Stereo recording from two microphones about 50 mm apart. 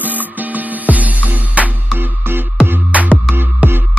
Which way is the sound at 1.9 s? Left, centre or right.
Right.